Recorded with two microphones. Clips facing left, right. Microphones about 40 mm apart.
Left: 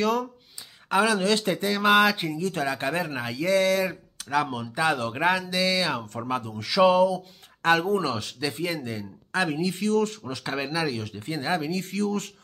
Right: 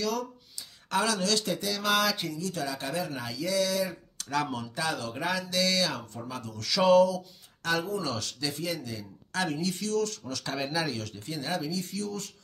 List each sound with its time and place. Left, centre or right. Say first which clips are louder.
0.0 s speech: left 6 dB; left
0.8 s speech: left 6 dB; left
4.2 s speech: left 4 dB; centre
4.7 s speech: left 9 dB; left
5.5 s speech: left 3 dB; left
6.1 s speech: left 9 dB; left
6.4 s speech: left 5 dB; left
7.6 s speech: left 7 dB; left
8.2 s speech: left 4 dB; left
10.4 s speech: left 3 dB; centre
11.1 s speech: left 5 dB; left